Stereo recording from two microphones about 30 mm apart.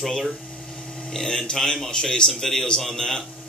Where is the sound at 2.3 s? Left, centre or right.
Centre.